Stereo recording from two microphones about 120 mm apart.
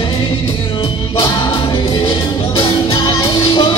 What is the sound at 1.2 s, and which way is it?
Music, 45° left (ahead or behind).